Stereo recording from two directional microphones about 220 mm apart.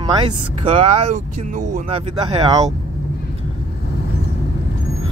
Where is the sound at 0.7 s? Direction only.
30° right (ahead or behind).